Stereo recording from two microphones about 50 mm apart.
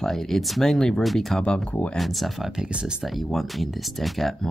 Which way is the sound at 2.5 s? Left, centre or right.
Centre.